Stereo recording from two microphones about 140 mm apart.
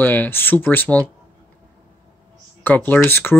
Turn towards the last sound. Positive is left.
turn(degrees=15)  # may be behind; listen again after turning